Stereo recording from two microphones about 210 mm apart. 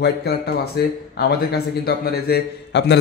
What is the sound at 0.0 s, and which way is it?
A man's voice, 50° left (ahead or behind).